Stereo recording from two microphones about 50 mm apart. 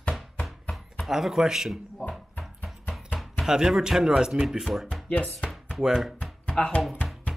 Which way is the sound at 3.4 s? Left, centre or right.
Centre.